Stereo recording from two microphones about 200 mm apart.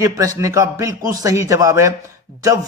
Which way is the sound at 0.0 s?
15° right (ahead or behind).